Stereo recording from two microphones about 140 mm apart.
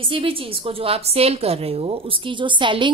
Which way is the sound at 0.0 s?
40° right (ahead or behind).